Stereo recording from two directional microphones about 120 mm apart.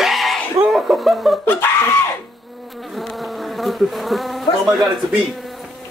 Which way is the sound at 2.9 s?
Centre (ahead or behind).